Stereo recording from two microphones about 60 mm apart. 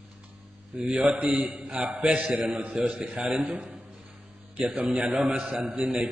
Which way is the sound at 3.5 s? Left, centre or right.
Centre.